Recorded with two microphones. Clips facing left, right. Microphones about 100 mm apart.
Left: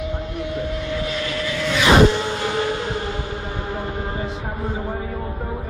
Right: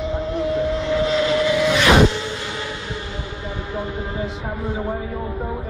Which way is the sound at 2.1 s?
55° left (ahead or behind).